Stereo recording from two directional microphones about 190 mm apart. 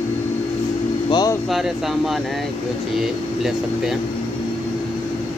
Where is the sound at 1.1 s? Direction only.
20° left (ahead or behind).